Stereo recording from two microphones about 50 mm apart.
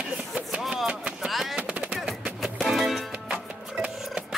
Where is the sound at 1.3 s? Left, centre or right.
Centre.